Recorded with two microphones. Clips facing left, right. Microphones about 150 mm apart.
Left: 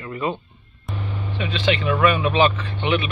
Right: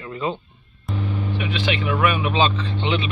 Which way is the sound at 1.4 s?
15° right (ahead or behind).